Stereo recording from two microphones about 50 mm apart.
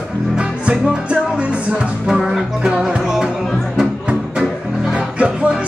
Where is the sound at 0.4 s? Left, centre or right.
Centre.